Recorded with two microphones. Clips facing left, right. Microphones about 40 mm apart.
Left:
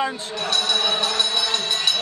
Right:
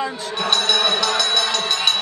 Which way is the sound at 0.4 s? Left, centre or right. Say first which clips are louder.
Right 4 dB; right.